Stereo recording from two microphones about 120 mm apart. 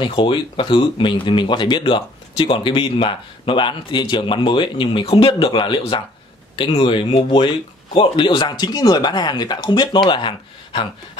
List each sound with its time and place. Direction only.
0.0 s speech: 40° left (ahead or behind)